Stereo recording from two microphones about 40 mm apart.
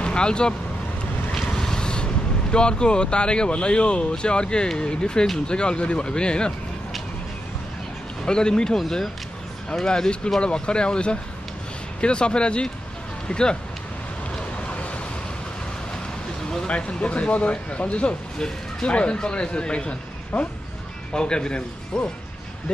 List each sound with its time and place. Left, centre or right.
0.0 s speech: left
1.3 s boat: centre
2.5 s speech: left
8.3 s speech: left
9.8 s speech: left
16.6 s speech: left